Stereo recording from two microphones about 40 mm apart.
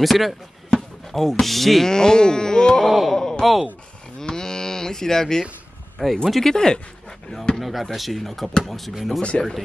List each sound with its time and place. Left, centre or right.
0.0 s speech: centre
0.7 s basketball bounce: centre
1.4 s speech: centre
1.9 s speech: centre
2.9 s speech: centre
3.2 s speech: centre
4.2 s cattle: centre
6.2 s speech: centre
6.5 s speech: centre
7.6 s speech: centre